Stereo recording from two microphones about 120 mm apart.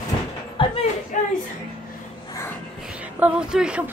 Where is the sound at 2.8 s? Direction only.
10° right (ahead or behind).